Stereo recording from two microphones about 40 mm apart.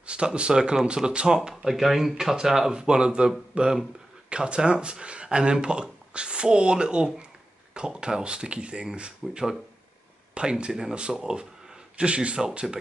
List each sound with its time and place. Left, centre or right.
0.0 s speech: right
1.5 s speech: centre
2.8 s speech: right
12.0 s speech: right
12.4 s speech: centre